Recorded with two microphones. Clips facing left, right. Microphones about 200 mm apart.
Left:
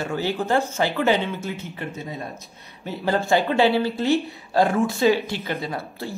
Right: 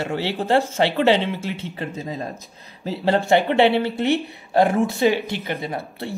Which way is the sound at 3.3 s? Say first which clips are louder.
Right 2 dB; 20° right (ahead or behind).